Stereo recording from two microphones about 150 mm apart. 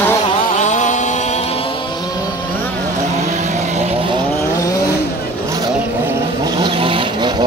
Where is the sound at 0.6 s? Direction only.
55° left (ahead or behind).